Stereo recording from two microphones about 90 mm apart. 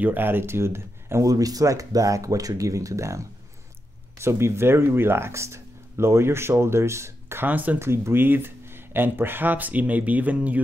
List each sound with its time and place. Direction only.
0.0 s speech: 20° right (ahead or behind)
1.2 s speech: 45° right (ahead or behind)
7.4 s speech: 20° right (ahead or behind)